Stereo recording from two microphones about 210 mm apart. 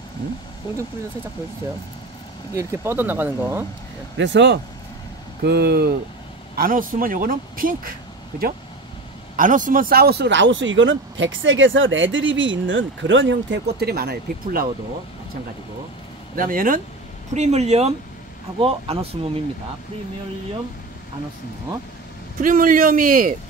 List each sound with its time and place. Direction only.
2.5 s speech: 10° right (ahead or behind)
4.2 s speech: 55° right (ahead or behind)
9.4 s speech: 40° right (ahead or behind)
16.3 s a man's voice: 40° right (ahead or behind)
22.4 s a man's voice: 40° right (ahead or behind)